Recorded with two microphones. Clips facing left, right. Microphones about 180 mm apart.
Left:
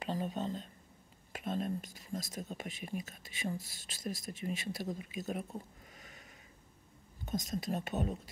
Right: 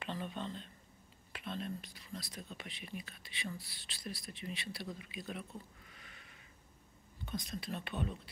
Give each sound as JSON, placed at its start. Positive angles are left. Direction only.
{"t": 0.0, "sound": "whispering", "side_deg": 40}
{"t": 1.3, "sound": "speech", "side_deg": 45}
{"t": 7.2, "sound": "speech", "side_deg": 45}